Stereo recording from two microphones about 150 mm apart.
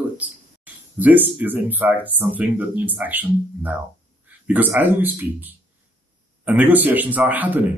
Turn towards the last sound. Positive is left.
turn(degrees=-10)  # may be behind; listen again after turning